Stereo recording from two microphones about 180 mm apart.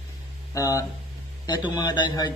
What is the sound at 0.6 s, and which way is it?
A woman's voice, 20° left (ahead or behind).